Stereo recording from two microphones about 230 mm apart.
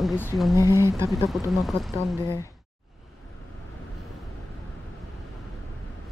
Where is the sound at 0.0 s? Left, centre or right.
Centre.